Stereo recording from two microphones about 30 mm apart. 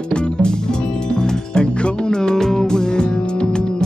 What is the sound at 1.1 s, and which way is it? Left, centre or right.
Music, left.